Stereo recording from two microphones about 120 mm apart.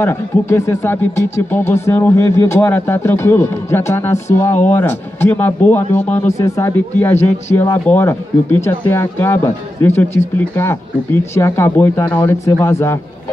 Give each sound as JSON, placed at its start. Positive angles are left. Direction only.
{"t": 0.0, "sound": "a man's voice", "side_deg": 25}
{"t": 6.2, "sound": "speech", "side_deg": 25}